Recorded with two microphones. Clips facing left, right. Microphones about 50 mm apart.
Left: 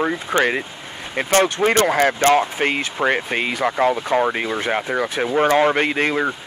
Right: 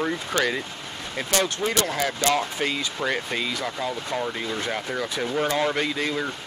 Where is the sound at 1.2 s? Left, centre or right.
Left.